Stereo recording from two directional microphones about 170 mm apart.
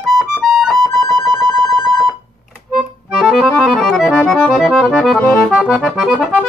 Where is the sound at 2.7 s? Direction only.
Centre (ahead or behind).